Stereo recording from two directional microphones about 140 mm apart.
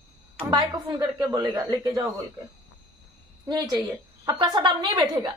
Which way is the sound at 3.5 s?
25° right (ahead or behind).